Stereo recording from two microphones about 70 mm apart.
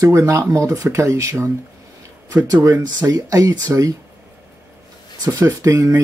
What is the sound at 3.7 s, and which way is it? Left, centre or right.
Speech, right.